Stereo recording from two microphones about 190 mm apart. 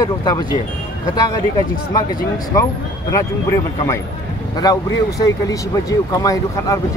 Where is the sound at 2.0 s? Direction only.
20° left (ahead or behind).